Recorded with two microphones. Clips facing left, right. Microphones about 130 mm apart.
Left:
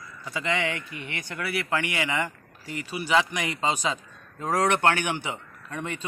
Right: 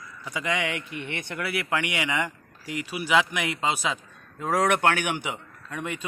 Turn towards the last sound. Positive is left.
turn(degrees=-10)  # may be behind; listen again after turning